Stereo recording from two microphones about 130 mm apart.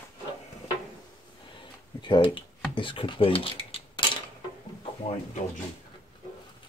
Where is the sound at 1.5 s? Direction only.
35° left (ahead or behind).